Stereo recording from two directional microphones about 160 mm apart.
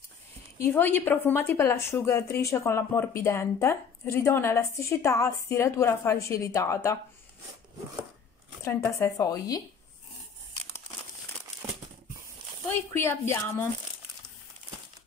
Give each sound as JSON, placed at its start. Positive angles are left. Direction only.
{"t": 0.6, "sound": "a woman's voice", "side_deg": 10}
{"t": 8.6, "sound": "speech", "side_deg": 20}
{"t": 12.6, "sound": "a woman's voice", "side_deg": 15}